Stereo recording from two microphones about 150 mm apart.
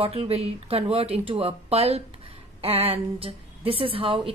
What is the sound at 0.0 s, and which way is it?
A woman's voice, 40° right (ahead or behind).